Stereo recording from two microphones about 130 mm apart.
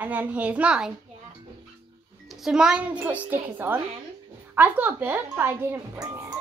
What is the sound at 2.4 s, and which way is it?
Speech, 5° right (ahead or behind).